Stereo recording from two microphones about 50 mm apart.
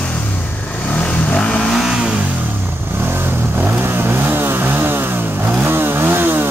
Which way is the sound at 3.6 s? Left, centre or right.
Right.